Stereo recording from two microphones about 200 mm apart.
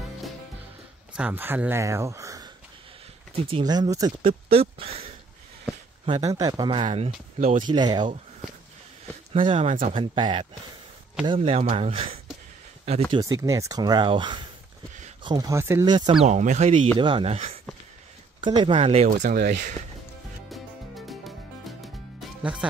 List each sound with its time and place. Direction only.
1.1 s speech: 10° right (ahead or behind); by 7.1 s 25° right (ahead or behind)
7.3 s speech: 40° right (ahead or behind)
7.6 s speech: 20° right (ahead or behind)
9.3 s speech: 30° right (ahead or behind)
16.3 s speech: 35° right (ahead or behind)
19.4 s speech: 50° right (ahead or behind)
20.4 s music: centre (ahead or behind)
22.4 s speech: 5° right (ahead or behind)